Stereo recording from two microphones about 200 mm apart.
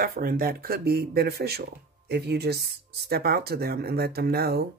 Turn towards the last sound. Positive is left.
turn(degrees=-50)  # may be behind; listen again after turning